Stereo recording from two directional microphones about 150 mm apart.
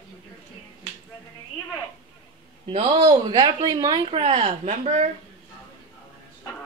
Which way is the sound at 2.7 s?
40° right (ahead or behind).